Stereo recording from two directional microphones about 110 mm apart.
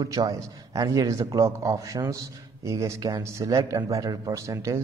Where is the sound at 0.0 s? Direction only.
30° right (ahead or behind).